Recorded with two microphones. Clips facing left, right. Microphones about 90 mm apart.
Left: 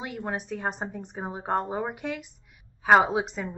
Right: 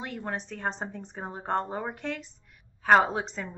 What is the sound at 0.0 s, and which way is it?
A woman's voice, 10° left (ahead or behind).